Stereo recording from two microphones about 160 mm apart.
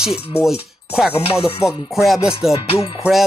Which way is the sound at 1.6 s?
Centre (ahead or behind).